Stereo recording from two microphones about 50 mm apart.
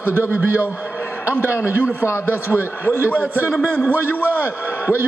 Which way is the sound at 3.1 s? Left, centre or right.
Right.